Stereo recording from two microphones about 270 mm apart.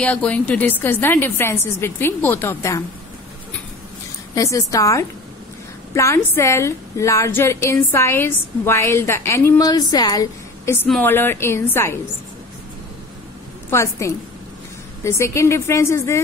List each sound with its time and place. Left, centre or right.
0.0 s a woman's voice: centre
4.4 s a woman's voice: centre
13.7 s a woman's voice: centre